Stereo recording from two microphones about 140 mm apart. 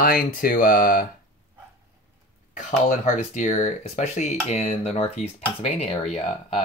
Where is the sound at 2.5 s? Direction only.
65° left (ahead or behind).